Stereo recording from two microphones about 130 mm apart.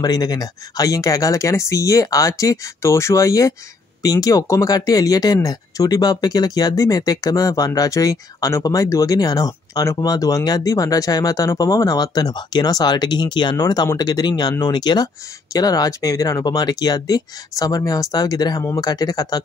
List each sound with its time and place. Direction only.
0.0 s speech: 30° left (ahead or behind)